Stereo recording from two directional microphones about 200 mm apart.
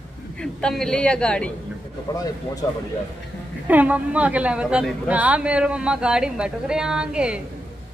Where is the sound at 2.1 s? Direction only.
15° left (ahead or behind).